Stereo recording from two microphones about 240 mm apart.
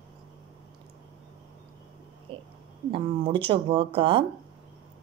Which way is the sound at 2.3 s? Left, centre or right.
Right.